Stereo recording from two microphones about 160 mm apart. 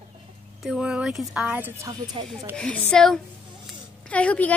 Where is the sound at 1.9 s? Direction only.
25° right (ahead or behind).